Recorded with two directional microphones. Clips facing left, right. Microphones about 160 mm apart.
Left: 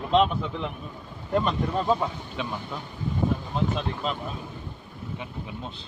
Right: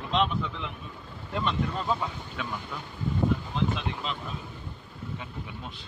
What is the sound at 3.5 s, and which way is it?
Speech, 45° left (ahead or behind).